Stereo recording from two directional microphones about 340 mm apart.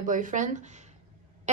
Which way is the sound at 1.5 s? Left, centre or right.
Centre.